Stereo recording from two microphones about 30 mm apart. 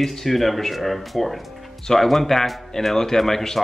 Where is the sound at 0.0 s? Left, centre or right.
Centre.